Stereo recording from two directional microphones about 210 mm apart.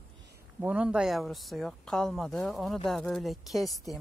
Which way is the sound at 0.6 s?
5° right (ahead or behind).